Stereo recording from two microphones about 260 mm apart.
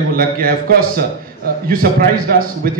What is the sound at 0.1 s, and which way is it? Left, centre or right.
A man's voice, right.